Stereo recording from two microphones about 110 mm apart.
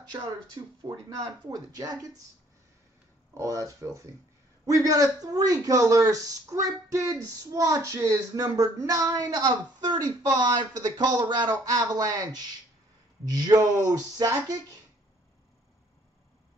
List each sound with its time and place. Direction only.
0.6 s speech: 40° right (ahead or behind)
3.3 s speech: 30° right (ahead or behind)